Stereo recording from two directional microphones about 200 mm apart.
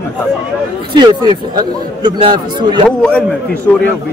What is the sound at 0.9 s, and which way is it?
A man's voice, 20° right (ahead or behind).